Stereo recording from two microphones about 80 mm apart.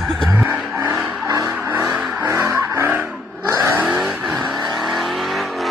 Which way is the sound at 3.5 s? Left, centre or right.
Right.